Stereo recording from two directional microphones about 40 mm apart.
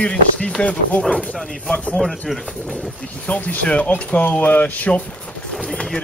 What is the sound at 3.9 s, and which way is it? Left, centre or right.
Speech, left.